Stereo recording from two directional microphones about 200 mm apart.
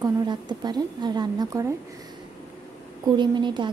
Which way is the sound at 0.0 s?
20° right (ahead or behind).